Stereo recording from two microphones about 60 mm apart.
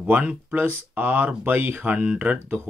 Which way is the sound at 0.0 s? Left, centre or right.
Right.